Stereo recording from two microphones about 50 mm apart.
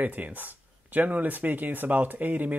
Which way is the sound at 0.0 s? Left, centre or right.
Right.